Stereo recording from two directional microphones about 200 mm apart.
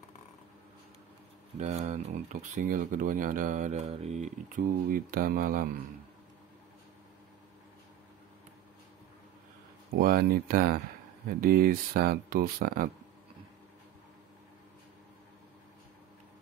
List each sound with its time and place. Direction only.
1.6 s speech: 35° right (ahead or behind)
9.9 s speech: 45° right (ahead or behind)